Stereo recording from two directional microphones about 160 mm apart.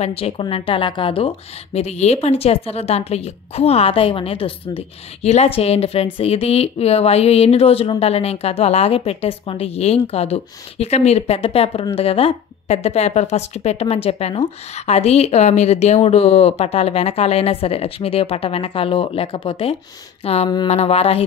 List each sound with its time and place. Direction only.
0.0 s a woman's voice: 35° left (ahead or behind)